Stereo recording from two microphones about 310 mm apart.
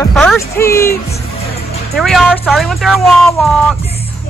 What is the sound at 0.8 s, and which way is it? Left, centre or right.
Speech, left.